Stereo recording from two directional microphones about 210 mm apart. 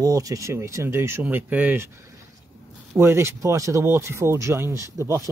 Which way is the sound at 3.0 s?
10° right (ahead or behind).